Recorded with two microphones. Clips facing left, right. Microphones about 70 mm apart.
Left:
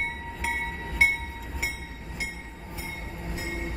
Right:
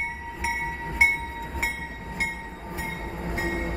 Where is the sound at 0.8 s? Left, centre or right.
Right.